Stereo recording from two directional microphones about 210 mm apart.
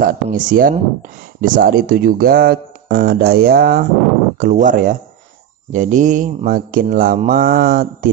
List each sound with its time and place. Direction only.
0.0 s mantra: 40° right (ahead or behind)
1.4 s speech: 40° right (ahead or behind)
4.4 s mantra: 40° right (ahead or behind)